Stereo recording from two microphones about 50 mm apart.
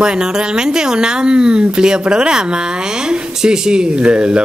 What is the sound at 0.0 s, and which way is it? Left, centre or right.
Speech, centre.